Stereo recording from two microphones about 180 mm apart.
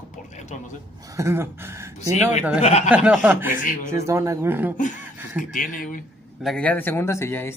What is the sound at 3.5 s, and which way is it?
Speech, 50° left (ahead or behind).